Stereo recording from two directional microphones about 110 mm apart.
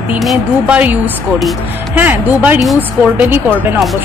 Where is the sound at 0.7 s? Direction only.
15° right (ahead or behind).